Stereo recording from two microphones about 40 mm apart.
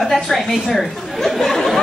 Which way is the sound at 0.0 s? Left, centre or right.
Centre.